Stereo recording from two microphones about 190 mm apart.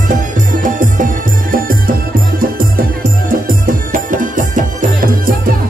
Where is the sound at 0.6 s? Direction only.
45° right (ahead or behind).